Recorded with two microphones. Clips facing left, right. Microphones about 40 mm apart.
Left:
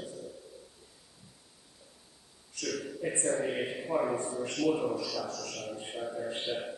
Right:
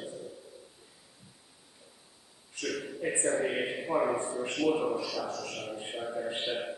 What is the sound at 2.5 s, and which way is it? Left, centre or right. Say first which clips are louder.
A man's voice: right 1 dB; right.